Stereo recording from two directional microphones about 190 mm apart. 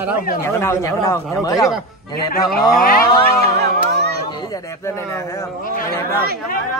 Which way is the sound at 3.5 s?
60° right (ahead or behind).